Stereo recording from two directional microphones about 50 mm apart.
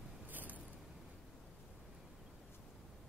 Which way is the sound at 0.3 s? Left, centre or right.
Right.